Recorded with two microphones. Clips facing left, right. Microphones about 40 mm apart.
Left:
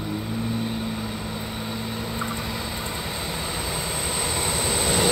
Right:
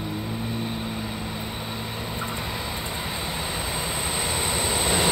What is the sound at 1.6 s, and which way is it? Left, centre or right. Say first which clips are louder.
Vehicle: left 2 dB; centre.